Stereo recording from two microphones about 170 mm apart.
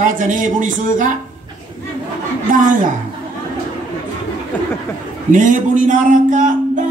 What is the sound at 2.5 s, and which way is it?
Speech, 50° right (ahead or behind).